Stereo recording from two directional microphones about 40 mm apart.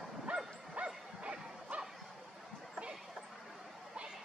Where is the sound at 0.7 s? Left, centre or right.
Right.